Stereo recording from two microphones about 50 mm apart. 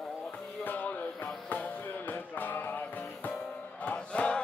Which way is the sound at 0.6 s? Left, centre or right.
Left.